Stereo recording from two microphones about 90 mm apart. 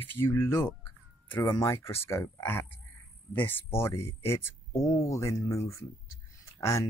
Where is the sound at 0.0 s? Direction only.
25° left (ahead or behind).